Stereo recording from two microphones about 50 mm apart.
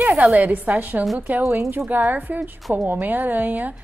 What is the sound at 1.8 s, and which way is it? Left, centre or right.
A woman's voice, right.